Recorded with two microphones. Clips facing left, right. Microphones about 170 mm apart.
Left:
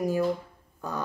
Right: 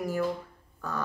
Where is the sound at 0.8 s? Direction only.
20° left (ahead or behind).